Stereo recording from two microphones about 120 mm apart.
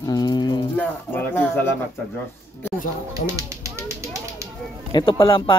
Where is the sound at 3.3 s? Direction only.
25° right (ahead or behind).